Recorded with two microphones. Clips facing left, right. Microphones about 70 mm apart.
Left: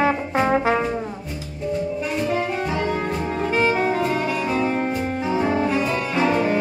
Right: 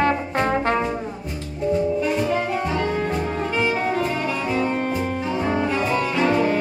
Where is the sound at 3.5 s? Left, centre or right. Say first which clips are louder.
Left 4 dB; left.